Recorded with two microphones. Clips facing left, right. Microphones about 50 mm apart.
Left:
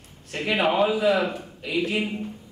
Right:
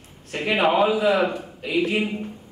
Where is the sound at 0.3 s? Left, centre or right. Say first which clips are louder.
Right 3 dB; centre.